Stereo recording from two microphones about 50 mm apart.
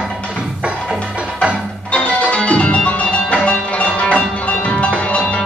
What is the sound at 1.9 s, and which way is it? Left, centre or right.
Music, left.